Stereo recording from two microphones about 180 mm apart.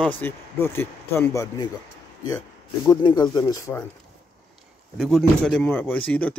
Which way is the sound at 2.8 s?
20° left (ahead or behind).